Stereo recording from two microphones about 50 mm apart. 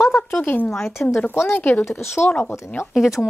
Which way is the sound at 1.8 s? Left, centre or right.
Left.